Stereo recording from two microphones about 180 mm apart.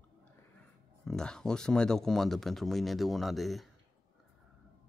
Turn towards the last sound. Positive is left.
turn(degrees=0)  # may be behind; listen again after turning